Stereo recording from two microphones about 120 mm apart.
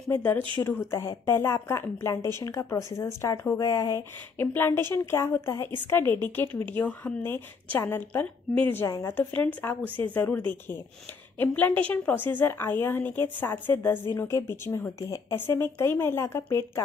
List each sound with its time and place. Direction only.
0.1 s a woman's voice: 15° left (ahead or behind)
4.4 s a woman's voice: 20° left (ahead or behind)
9.8 s speech: 45° right (ahead or behind)
10.1 s a woman's voice: 15° left (ahead or behind)